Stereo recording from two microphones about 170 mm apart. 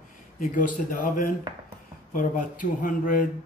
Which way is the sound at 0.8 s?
50° left (ahead or behind).